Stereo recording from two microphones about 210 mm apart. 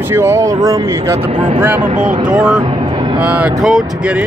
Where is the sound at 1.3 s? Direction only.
30° right (ahead or behind).